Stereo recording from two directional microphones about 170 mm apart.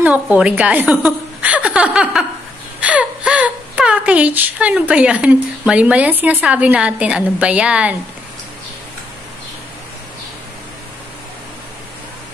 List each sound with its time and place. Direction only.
0.0 s a woman's voice: 10° right (ahead or behind)